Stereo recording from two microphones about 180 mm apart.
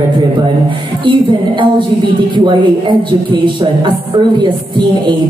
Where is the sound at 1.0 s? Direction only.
25° right (ahead or behind).